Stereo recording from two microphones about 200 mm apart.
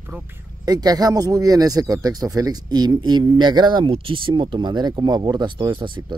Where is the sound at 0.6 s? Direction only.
20° right (ahead or behind).